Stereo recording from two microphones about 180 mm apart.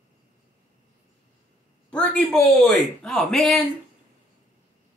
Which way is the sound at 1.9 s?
5° left (ahead or behind).